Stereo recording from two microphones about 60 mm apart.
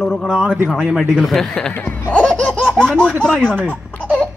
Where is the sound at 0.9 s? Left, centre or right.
Centre.